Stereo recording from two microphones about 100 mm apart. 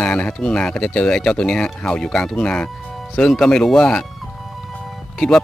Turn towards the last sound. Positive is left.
turn(degrees=5)  # may be behind; listen again after turning